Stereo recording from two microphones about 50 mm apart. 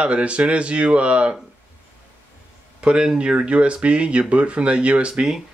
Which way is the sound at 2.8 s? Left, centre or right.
Centre.